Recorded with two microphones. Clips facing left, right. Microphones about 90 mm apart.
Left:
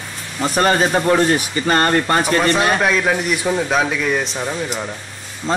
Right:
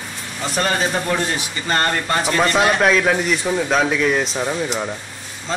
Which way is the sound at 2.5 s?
5° left (ahead or behind).